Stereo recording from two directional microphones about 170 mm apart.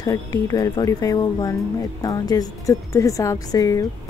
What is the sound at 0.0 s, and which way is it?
A woman's voice, 20° left (ahead or behind).